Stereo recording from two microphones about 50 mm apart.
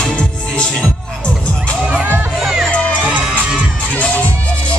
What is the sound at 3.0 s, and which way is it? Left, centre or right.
Music, centre.